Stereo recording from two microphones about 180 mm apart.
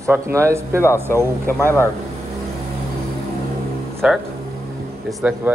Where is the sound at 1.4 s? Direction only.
15° left (ahead or behind).